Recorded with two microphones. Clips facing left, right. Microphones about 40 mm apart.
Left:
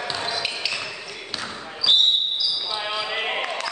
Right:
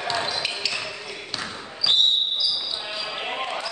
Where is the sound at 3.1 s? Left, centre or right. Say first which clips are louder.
Left 1 dB; left.